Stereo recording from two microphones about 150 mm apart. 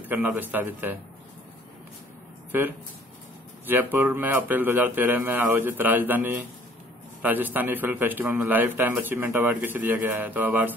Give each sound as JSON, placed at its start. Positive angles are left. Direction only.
{"t": 0.0, "sound": "a man's voice", "side_deg": -10}
{"t": 3.6, "sound": "a man's voice", "side_deg": -15}